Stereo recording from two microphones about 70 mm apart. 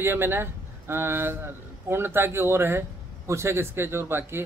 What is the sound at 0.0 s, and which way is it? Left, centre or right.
A man's voice, right.